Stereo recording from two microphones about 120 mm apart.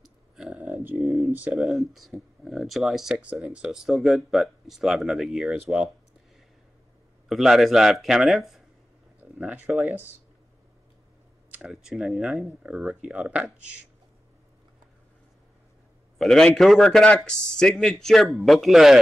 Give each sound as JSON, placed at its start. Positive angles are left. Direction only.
{"t": 0.0, "sound": "a sound", "side_deg": -5}
{"t": 1.2, "sound": "speech", "side_deg": -15}
{"t": 1.5, "sound": "speech", "side_deg": 0}
{"t": 7.2, "sound": "speech", "side_deg": 0}
{"t": 9.4, "sound": "speech", "side_deg": -15}
{"t": 11.5, "sound": "speech", "side_deg": -5}
{"t": 16.2, "sound": "speech", "side_deg": 5}